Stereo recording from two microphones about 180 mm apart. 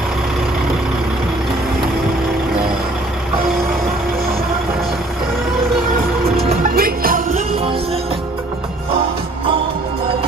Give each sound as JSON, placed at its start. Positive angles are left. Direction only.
{"t": 6.7, "sound": "music", "side_deg": -55}